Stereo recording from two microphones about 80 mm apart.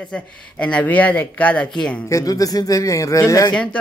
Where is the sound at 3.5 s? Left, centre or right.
Centre.